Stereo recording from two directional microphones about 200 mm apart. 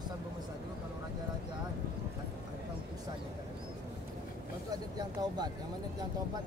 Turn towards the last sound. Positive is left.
turn(degrees=-20)  # may be behind; listen again after turning